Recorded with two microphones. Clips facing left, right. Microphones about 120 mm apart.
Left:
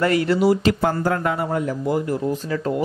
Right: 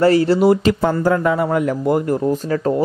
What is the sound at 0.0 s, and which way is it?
Speech, 30° right (ahead or behind).